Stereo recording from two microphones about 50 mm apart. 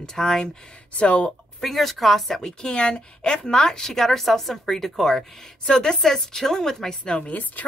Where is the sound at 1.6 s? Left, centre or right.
Centre.